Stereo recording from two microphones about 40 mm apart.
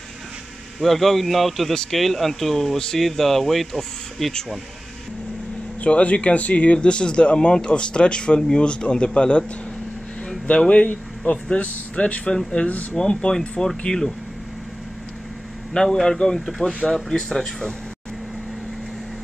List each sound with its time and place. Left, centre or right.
0.7 s speech: centre
5.8 s speech: left
10.4 s speech: left; by 14.1 s centre
15.7 s speech: centre